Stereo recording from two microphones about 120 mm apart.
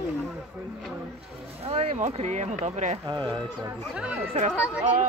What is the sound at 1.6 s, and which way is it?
Speech, 55° right (ahead or behind).